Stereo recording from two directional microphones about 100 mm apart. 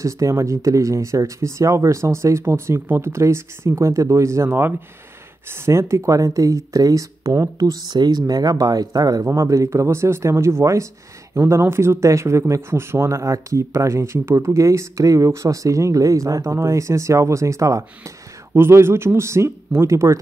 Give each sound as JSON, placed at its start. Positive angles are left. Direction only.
{"t": 0.0, "sound": "speech", "side_deg": -30}